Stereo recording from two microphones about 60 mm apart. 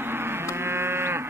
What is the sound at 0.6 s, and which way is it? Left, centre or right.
Moo, right.